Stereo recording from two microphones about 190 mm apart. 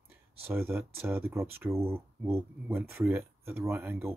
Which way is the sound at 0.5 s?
10° right (ahead or behind).